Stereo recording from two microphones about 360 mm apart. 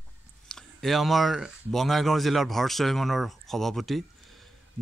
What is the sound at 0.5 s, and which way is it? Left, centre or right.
Speech, centre.